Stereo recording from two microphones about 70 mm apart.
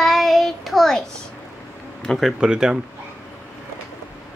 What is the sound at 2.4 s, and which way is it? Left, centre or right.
Speech, centre.